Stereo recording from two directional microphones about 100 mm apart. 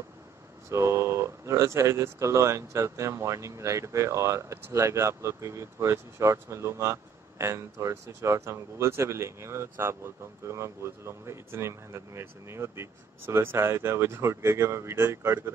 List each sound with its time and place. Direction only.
0.7 s speech: 30° right (ahead or behind)